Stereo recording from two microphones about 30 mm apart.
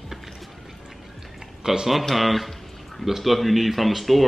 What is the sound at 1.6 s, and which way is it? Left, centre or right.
Speech, centre.